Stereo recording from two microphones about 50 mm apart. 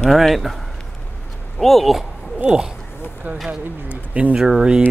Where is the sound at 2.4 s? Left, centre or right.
Centre.